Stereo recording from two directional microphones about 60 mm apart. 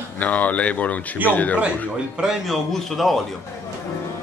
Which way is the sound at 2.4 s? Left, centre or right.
Centre.